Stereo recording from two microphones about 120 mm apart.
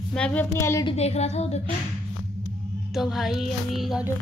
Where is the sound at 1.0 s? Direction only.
65° left (ahead or behind).